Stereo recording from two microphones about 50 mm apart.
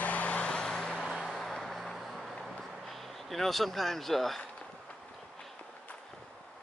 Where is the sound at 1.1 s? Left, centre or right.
Centre.